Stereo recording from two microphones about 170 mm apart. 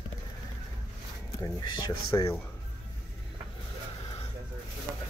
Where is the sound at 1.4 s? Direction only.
25° left (ahead or behind).